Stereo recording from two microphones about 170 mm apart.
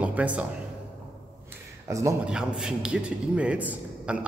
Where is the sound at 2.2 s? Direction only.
5° right (ahead or behind).